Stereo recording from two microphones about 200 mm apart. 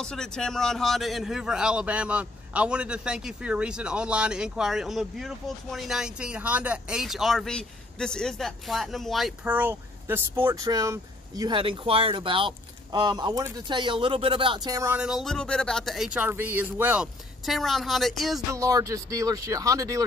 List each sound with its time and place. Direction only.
0.0 s a man's voice: 5° left (ahead or behind)
18.5 s speech: 15° right (ahead or behind)